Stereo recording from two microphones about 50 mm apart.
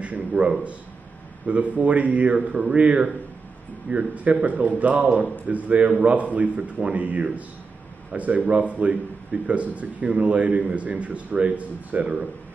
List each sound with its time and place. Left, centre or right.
0.0 s a man's voice: right
1.5 s a man's voice: right